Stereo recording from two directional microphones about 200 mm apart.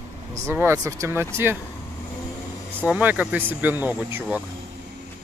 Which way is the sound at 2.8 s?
10° right (ahead or behind).